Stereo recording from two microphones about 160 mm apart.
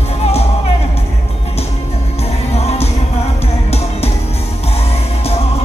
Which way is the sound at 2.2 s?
40° left (ahead or behind).